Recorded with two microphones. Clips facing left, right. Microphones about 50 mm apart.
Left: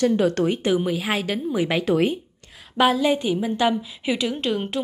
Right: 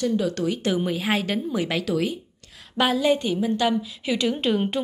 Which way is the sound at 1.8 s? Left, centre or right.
Left.